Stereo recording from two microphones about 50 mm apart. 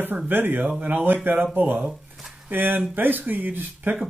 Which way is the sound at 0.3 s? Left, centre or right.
Right.